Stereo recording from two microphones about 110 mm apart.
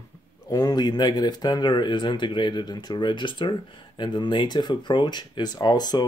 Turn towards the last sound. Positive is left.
turn(degrees=40)  # may be behind; listen again after turning